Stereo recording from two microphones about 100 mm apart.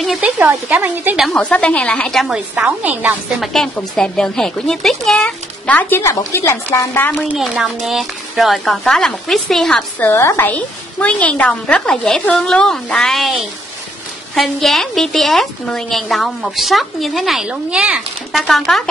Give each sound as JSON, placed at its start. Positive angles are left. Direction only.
{"t": 0.2, "sound": "a woman's voice", "side_deg": -15}
{"t": 1.3, "sound": "a woman's voice", "side_deg": 10}
{"t": 3.3, "sound": "speech", "side_deg": 5}
{"t": 7.3, "sound": "a woman's voice", "side_deg": -5}
{"t": 9.9, "sound": "a woman's voice", "side_deg": 20}
{"t": 10.5, "sound": "a woman's voice", "side_deg": 15}
{"t": 18.3, "sound": "a woman's voice", "side_deg": 0}